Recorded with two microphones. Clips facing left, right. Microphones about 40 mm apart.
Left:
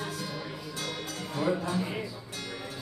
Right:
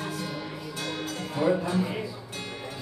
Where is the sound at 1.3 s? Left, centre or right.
Centre.